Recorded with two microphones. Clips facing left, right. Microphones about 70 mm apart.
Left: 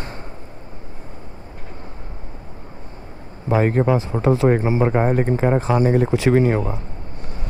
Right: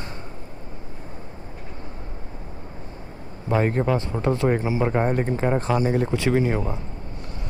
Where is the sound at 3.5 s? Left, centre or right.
Centre.